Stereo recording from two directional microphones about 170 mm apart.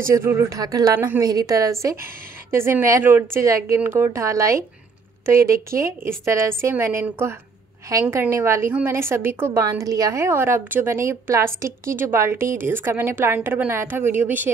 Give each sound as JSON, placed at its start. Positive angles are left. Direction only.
{"t": 0.1, "sound": "a woman's voice", "side_deg": -15}